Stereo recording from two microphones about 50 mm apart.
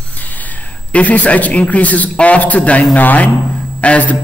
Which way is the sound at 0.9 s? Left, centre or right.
Left.